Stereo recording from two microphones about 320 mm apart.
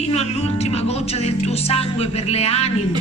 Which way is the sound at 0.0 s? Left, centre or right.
Centre.